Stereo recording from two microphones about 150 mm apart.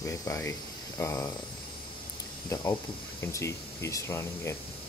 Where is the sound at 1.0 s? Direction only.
15° left (ahead or behind).